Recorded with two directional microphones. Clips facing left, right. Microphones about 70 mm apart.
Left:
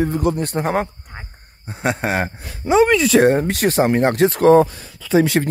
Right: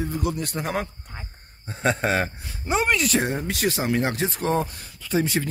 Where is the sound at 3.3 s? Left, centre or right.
Left.